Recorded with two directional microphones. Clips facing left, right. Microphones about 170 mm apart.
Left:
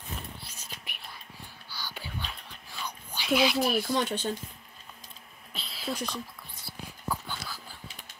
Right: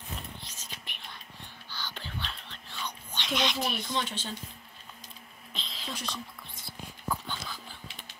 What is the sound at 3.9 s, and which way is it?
Speech, 45° left (ahead or behind).